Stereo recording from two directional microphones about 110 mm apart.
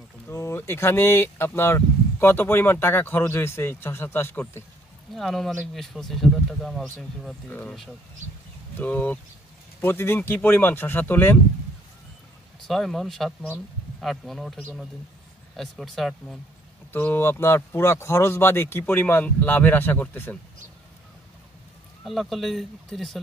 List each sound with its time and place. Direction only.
0.3 s speech: 25° left (ahead or behind)
5.1 s speech: centre (ahead or behind)
7.4 s speech: 15° left (ahead or behind)
8.7 s speech: 15° left (ahead or behind)
12.6 s speech: centre (ahead or behind)
16.9 s speech: 20° left (ahead or behind)
22.0 s speech: centre (ahead or behind)